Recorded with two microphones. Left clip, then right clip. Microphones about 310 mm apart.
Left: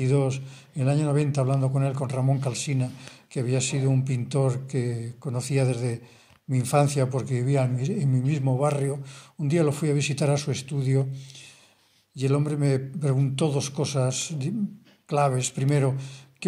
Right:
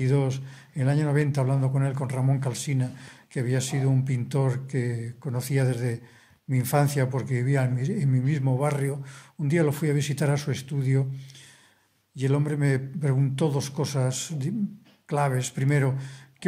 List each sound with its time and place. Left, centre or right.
0.0 s a man's voice: right